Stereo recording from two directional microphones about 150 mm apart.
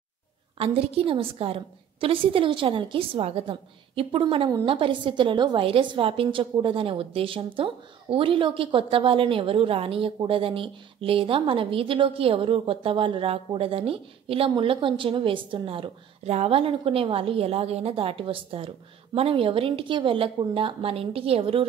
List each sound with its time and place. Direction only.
0.6 s a woman's voice: 40° right (ahead or behind)